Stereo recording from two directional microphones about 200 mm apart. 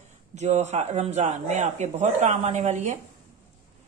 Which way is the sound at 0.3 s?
35° right (ahead or behind).